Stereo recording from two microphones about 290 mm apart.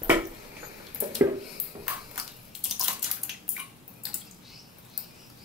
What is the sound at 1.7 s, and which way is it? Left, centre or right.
Ping, centre.